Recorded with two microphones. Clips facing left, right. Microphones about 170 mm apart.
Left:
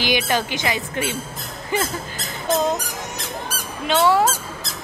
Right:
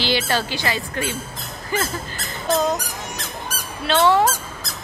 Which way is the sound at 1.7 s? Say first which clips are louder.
Left 1 dB; 20° left (ahead or behind).